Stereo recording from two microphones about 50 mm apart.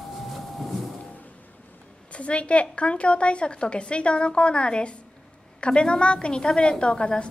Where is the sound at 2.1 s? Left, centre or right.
Left.